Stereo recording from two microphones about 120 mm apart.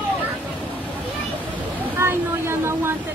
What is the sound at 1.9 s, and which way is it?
Speech, 20° right (ahead or behind).